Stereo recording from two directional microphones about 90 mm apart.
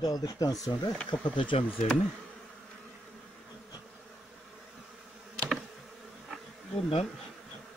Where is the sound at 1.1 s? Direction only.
70° left (ahead or behind).